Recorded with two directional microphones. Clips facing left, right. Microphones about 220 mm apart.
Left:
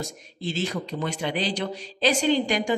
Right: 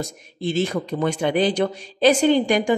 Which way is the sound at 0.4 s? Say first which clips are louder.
Right 6 dB; 55° right (ahead or behind).